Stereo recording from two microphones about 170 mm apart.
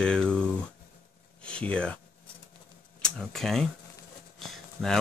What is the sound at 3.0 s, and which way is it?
Speech, 5° left (ahead or behind).